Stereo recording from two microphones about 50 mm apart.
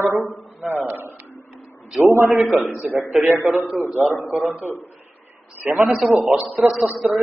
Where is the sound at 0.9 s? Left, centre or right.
Right.